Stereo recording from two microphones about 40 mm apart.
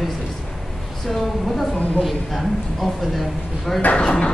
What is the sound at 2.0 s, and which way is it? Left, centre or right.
A man's voice, centre.